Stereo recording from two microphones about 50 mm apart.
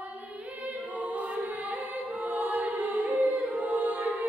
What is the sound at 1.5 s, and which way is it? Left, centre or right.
Music, right.